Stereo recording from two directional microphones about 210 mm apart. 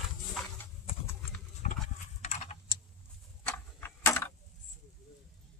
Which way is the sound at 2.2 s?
30° left (ahead or behind).